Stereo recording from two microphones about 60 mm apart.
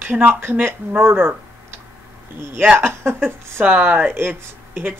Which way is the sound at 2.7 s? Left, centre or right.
Right.